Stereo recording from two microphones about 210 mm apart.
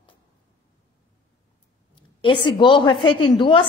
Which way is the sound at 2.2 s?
25° left (ahead or behind).